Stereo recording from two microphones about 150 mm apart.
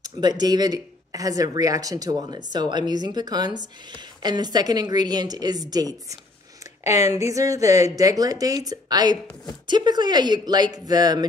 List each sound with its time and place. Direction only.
0.0 s speech: 25° right (ahead or behind)